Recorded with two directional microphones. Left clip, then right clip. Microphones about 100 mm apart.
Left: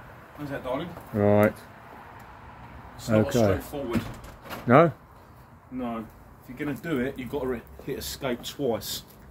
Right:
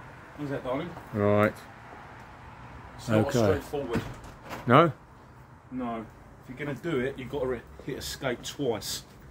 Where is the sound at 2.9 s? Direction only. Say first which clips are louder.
Left 2 dB; centre (ahead or behind).